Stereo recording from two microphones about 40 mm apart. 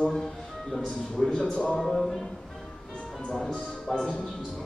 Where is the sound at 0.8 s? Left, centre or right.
Centre.